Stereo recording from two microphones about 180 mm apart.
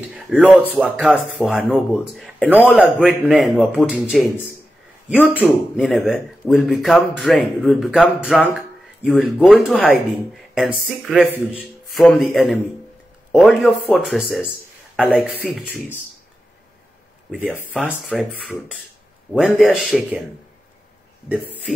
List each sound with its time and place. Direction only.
0.1 s a sound: 10° right (ahead or behind)
0.7 s a man's voice: 5° right (ahead or behind)
17.3 s speech: 10° right (ahead or behind)